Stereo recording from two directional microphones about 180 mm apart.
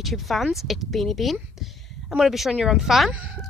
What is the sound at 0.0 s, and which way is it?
Speech, centre (ahead or behind).